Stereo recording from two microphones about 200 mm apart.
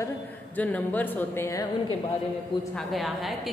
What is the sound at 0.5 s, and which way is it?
Speech, 10° left (ahead or behind).